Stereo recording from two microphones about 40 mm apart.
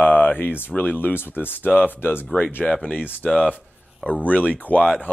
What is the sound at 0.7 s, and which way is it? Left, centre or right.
Speech, left.